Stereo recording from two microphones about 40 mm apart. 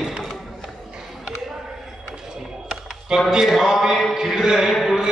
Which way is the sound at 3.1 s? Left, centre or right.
Right.